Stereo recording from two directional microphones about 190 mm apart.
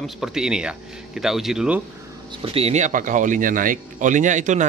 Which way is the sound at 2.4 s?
30° right (ahead or behind).